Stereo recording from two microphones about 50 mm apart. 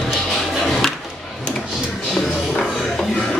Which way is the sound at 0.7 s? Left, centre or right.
Centre.